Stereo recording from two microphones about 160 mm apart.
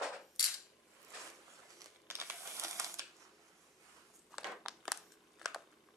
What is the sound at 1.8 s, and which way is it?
Crumpling, 15° right (ahead or behind).